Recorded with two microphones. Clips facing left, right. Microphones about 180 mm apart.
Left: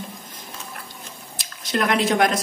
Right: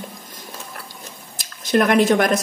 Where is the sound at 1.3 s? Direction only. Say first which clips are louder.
Right 7 dB; 50° right (ahead or behind).